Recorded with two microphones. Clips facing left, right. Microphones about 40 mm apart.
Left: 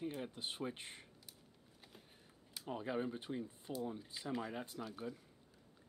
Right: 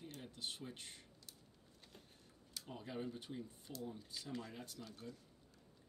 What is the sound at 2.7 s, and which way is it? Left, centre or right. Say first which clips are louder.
Speech: left 6 dB; left.